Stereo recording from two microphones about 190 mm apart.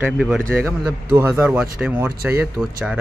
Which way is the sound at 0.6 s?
15° right (ahead or behind).